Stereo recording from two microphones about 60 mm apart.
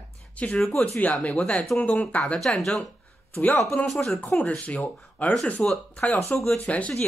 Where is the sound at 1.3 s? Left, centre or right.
Centre.